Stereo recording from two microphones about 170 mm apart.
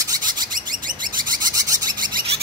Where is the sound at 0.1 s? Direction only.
25° right (ahead or behind).